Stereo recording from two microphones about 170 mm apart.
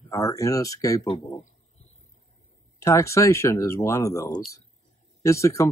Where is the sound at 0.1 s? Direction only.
20° left (ahead or behind).